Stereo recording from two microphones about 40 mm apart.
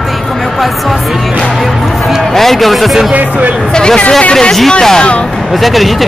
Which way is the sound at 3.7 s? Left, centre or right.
Centre.